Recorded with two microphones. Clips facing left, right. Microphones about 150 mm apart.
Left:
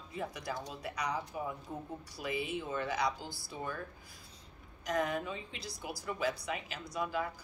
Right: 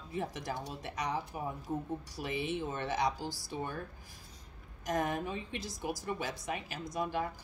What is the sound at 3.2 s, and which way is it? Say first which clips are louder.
Speech: right 5 dB; 90° right.